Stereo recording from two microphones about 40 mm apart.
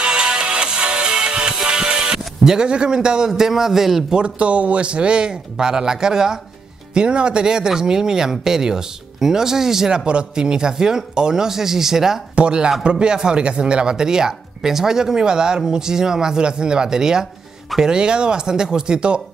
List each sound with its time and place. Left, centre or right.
0.0 s music: centre
3.3 s speech: centre
4.1 s speech: right
10.0 s speech: right
12.4 s speech: right